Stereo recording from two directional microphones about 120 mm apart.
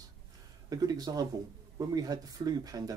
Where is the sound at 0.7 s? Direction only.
30° right (ahead or behind).